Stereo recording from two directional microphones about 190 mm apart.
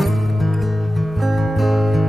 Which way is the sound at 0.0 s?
Centre (ahead or behind).